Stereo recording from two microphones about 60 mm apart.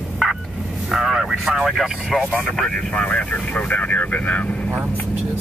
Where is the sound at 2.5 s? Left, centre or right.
Centre.